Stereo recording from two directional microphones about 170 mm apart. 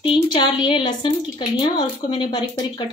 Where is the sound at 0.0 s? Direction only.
30° left (ahead or behind).